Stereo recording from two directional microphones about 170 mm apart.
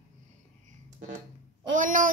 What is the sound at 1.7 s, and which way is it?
Speech, 50° right (ahead or behind).